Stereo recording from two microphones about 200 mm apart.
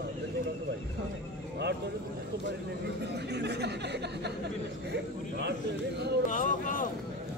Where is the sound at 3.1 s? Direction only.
55° right (ahead or behind).